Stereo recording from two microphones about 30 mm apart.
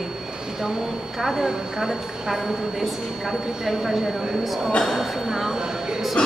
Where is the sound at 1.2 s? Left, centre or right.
Centre.